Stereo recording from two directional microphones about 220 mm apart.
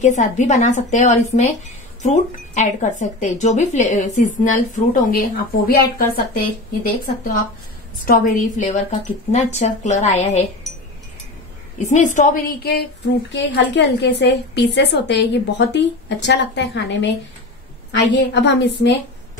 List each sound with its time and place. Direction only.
0.0 s a woman's voice: 35° left (ahead or behind)
8.0 s speech: 40° left (ahead or behind)
11.8 s speech: 35° left (ahead or behind)
13.4 s a woman's voice: 55° left (ahead or behind)
18.1 s a woman's voice: 50° left (ahead or behind)